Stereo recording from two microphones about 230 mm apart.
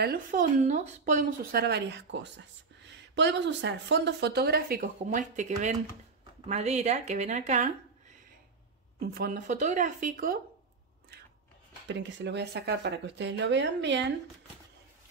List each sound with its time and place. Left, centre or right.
0.0 s speech: right
9.0 s speech: right
11.9 s speech: right